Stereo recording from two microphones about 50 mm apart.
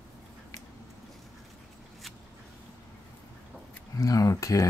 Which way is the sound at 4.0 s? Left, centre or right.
Left.